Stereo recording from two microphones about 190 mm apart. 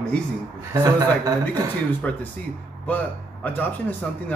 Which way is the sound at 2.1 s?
5° left (ahead or behind).